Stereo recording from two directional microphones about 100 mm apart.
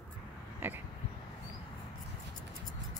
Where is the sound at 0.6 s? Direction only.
20° right (ahead or behind).